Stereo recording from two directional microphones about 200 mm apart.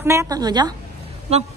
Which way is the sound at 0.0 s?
15° right (ahead or behind).